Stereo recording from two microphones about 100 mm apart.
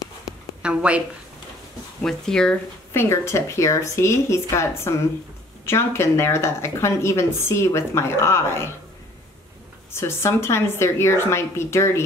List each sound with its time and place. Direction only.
0.6 s a woman's voice: 10° right (ahead or behind)
2.0 s speech: 5° left (ahead or behind)
2.9 s speech: 25° left (ahead or behind)
9.9 s speech: 25° left (ahead or behind)